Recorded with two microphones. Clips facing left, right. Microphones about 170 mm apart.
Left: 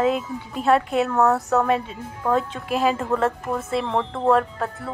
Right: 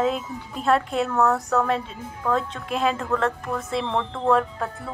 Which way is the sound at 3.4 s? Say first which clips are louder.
Left 2 dB; 25° left (ahead or behind).